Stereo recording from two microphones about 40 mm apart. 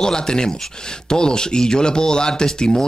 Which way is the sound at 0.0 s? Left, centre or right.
Centre.